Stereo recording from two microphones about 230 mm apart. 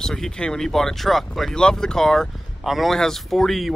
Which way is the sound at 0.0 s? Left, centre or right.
Centre.